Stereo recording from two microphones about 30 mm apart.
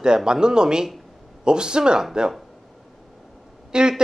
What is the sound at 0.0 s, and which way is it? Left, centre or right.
A man's voice, right.